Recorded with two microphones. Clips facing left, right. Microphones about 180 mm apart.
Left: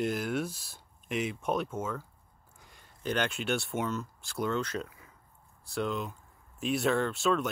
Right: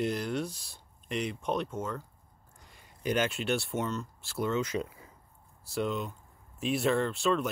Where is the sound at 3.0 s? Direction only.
5° right (ahead or behind).